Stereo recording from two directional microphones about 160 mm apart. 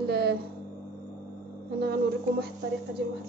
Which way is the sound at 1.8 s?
80° right.